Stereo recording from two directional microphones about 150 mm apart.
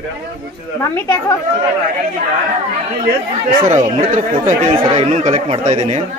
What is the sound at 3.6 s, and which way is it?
Speech, 55° right (ahead or behind).